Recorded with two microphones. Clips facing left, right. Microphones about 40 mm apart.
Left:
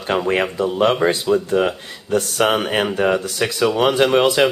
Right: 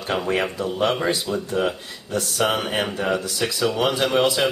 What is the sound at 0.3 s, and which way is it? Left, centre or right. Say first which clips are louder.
Speech: left 4 dB; left.